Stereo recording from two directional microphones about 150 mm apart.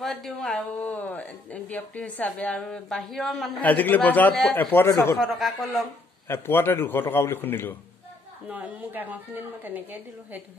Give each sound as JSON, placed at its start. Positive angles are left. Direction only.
{"t": 0.0, "sound": "speech", "side_deg": 5}
{"t": 5.2, "sound": "speech", "side_deg": 0}
{"t": 6.2, "sound": "a man's voice", "side_deg": 15}
{"t": 8.5, "sound": "a woman's voice", "side_deg": -10}